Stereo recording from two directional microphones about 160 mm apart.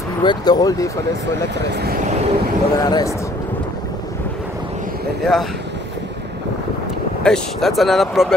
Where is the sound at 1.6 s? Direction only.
90° right.